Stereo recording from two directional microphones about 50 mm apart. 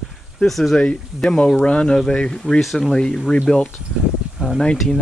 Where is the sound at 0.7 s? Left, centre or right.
Left.